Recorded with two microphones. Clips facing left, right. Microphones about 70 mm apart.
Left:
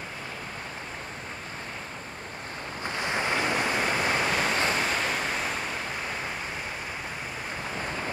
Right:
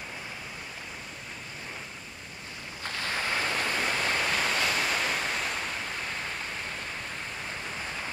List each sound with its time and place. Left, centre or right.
2.8 s waves: centre
4.8 s waves: centre